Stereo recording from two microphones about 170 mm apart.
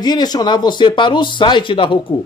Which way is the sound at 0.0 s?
25° left (ahead or behind).